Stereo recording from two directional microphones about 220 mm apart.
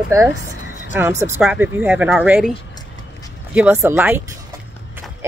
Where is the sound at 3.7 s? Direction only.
10° right (ahead or behind).